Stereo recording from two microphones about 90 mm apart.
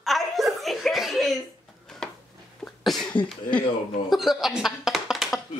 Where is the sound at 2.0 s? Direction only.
5° left (ahead or behind).